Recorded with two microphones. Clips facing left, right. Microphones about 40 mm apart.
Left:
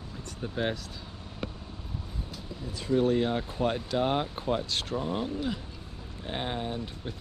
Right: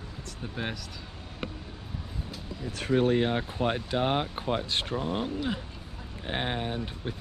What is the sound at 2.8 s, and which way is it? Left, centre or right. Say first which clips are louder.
Speech: right 1 dB; right.